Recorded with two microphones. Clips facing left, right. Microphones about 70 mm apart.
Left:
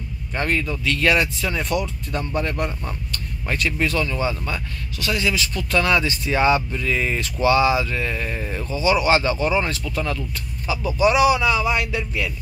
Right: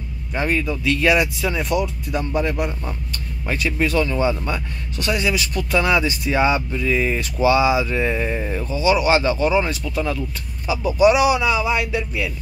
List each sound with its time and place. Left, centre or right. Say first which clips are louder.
0.3 s speech: right 2 dB; centre
4.0 s speech: right 4 dB; centre
5.2 s speech: right 1 dB; centre